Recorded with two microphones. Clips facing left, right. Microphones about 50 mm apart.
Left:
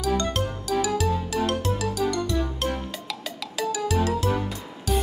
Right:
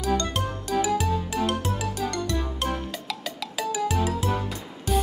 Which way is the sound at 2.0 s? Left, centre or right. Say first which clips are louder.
Left 3 dB; right.